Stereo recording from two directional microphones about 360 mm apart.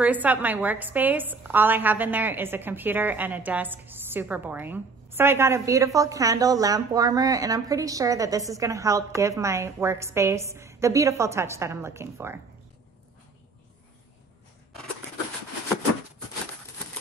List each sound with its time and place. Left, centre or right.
0.0 s a woman's voice: centre